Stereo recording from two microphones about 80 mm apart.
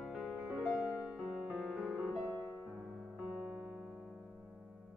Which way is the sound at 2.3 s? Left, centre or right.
Centre.